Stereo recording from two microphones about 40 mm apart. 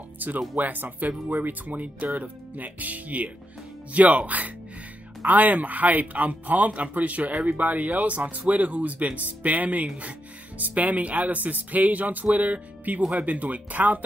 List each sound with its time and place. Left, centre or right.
0.2 s speech: right